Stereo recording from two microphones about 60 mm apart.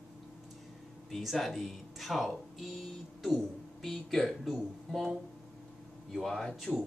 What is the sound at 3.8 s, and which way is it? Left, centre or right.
Speech, centre.